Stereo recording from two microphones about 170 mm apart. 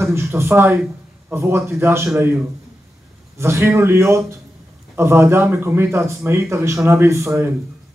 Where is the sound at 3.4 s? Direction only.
15° right (ahead or behind).